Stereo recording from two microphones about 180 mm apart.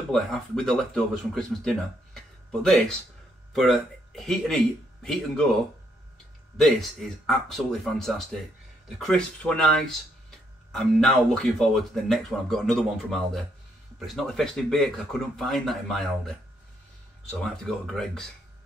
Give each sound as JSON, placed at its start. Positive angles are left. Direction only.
{"t": 0.1, "sound": "speech", "side_deg": 5}
{"t": 6.6, "sound": "speech", "side_deg": 0}